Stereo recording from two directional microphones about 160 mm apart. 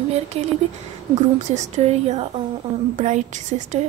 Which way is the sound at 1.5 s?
45° right (ahead or behind).